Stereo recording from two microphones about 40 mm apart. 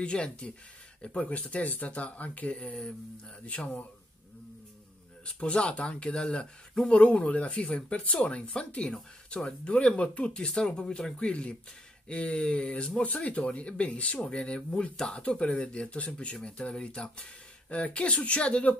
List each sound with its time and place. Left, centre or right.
0.0 s speech: left
1.2 s speech: left
3.4 s speech: left
5.2 s speech: left